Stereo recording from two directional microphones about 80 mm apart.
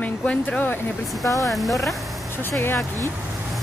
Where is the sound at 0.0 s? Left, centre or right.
Centre.